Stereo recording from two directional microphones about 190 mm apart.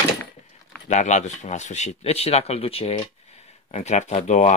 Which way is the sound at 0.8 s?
40° left (ahead or behind).